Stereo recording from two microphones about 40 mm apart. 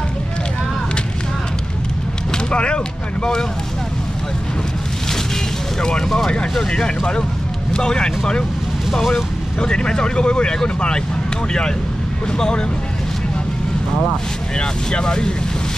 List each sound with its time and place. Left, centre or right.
2.3 s a sound: left
5.8 s speech: centre
9.6 s speech: left
12.3 s speech: centre
14.6 s speech: left